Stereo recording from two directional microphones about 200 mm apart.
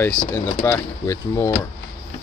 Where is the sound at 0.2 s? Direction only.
15° left (ahead or behind).